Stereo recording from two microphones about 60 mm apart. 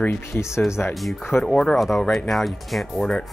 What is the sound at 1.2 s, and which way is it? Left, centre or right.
Speech, left.